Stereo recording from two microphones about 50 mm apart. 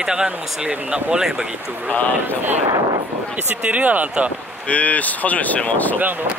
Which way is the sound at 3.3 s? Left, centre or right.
Right.